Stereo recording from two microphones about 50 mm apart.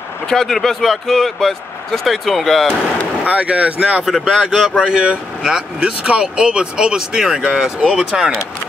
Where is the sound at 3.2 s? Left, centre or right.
Right; by 8.0 s centre.